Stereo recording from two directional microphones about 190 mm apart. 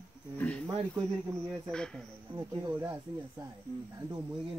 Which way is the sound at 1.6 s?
5° left (ahead or behind).